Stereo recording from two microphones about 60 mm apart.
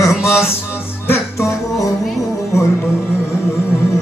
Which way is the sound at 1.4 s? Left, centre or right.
Left.